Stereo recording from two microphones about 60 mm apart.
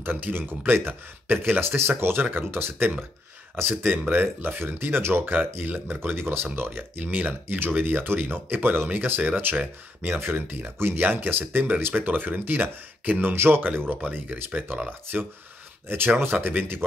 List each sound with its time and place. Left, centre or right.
0.0 s speech: right